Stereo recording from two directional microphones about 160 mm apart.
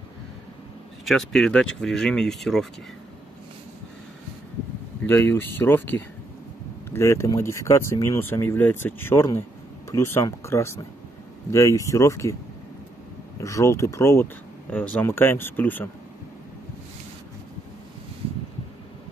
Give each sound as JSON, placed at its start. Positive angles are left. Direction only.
{"t": 1.0, "sound": "speech", "side_deg": 0}
{"t": 5.0, "sound": "speech", "side_deg": 15}
{"t": 13.4, "sound": "speech", "side_deg": 20}